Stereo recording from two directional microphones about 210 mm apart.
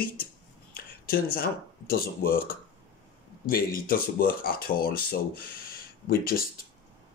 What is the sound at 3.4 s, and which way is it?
Speech, 45° left (ahead or behind).